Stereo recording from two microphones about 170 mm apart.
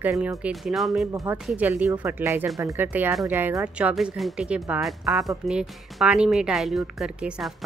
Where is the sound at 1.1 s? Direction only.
20° right (ahead or behind).